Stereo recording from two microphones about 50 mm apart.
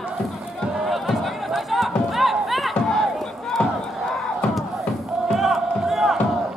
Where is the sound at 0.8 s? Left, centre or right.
Centre.